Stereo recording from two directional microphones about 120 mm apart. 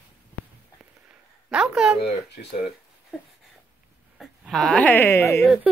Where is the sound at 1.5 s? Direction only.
5° right (ahead or behind).